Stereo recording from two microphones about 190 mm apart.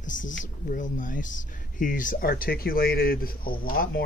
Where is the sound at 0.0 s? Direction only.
45° left (ahead or behind).